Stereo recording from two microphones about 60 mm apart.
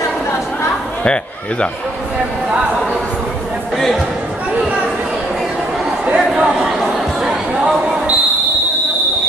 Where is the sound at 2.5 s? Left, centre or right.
Right.